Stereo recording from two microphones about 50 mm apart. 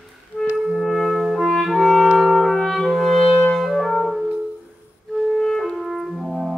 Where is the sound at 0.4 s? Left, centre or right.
Centre.